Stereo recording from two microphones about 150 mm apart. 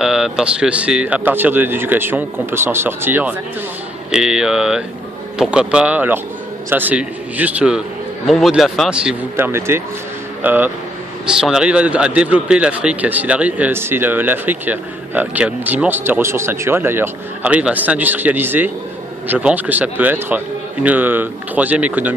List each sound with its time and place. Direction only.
0.0 s speech: 5° right (ahead or behind)
9.5 s speech: 15° right (ahead or behind)